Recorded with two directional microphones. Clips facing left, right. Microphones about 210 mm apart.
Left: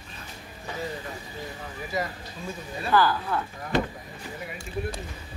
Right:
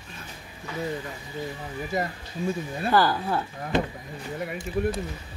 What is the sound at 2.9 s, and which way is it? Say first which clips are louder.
Speech: even; 35° right (ahead or behind).